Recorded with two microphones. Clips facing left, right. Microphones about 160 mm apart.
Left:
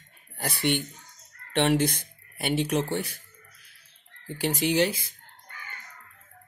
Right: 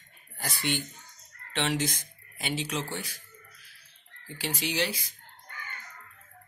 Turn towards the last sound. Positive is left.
turn(degrees=50)  # may be behind; listen again after turning